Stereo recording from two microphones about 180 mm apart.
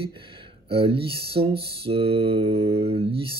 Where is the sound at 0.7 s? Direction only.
30° right (ahead or behind).